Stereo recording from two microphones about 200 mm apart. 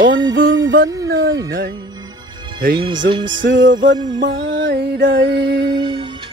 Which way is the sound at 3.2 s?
65° right (ahead or behind).